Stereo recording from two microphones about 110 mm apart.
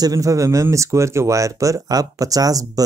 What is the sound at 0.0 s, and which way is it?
Speech, 30° right (ahead or behind).